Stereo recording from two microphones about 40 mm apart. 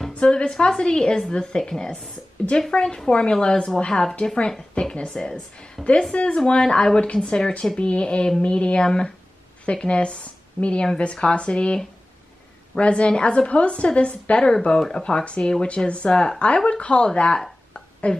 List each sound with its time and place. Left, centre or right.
0.1 s a woman's voice: left
15.2 s a woman's voice: left